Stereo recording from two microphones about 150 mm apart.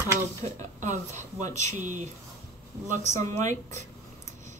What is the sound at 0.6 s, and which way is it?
Speech, 50° right (ahead or behind).